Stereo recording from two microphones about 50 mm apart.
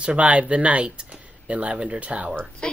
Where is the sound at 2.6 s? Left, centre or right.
Centre.